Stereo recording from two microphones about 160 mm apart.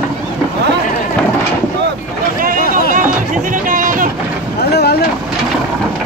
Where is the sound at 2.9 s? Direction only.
55° right (ahead or behind).